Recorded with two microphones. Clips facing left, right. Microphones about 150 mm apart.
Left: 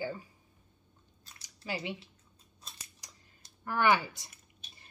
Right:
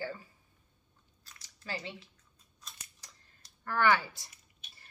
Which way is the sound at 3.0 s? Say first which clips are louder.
Left 1 dB; 15° left (ahead or behind).